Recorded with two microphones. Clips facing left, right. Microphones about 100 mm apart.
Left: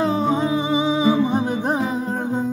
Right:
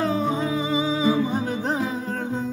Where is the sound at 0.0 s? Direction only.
25° left (ahead or behind).